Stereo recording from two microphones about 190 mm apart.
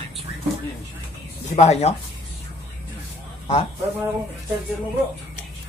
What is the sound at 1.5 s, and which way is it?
Speech, 35° left (ahead or behind).